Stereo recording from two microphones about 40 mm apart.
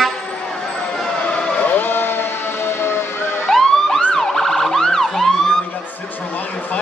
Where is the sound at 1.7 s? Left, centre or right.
Left.